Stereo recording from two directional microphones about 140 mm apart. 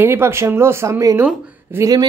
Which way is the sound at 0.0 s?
15° right (ahead or behind).